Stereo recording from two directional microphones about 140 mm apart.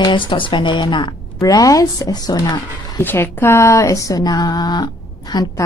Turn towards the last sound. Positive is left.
turn(degrees=30)  # may be behind; listen again after turning